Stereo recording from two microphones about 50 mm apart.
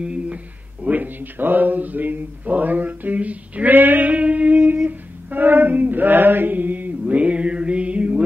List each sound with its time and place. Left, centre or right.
0.0 s a sound: right
0.8 s speech: right
4.8 s male singing: right